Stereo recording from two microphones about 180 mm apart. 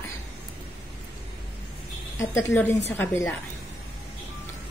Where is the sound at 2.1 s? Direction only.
15° left (ahead or behind).